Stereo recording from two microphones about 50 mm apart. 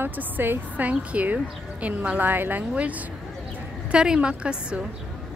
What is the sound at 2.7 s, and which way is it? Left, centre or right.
A woman's voice, right.